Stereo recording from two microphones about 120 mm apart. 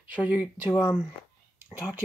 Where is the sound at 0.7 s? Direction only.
15° left (ahead or behind).